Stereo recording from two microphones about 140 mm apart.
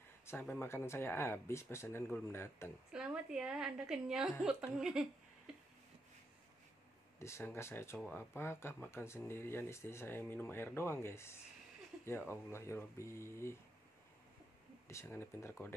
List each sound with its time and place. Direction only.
0.3 s speech: 15° left (ahead or behind)
2.9 s a woman's voice: 5° right (ahead or behind)
5.5 s a sound: 5° right (ahead or behind)
7.2 s speech: 20° left (ahead or behind)
14.9 s speech: 20° left (ahead or behind)